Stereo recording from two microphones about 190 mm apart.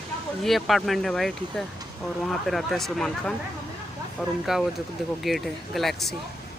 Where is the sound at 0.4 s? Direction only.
Centre (ahead or behind).